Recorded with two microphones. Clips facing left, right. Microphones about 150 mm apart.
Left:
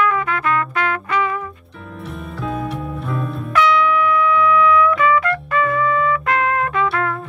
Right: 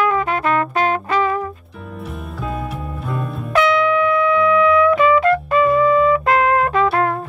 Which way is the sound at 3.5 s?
30° right (ahead or behind).